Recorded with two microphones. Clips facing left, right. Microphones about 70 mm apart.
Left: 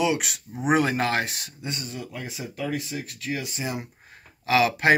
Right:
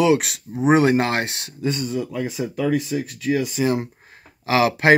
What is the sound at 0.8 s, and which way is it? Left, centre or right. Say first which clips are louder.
Speech: right 6 dB; right.